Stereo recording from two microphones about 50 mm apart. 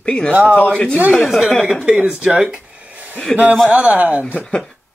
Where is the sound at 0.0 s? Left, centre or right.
Centre.